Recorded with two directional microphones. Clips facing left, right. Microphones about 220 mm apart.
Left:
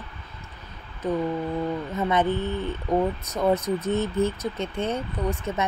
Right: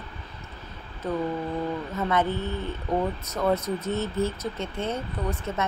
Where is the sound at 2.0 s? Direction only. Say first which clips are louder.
Left 2 dB; 20° left (ahead or behind).